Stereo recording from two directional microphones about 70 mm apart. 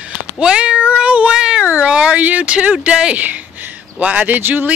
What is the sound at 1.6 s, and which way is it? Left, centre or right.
Speech, centre.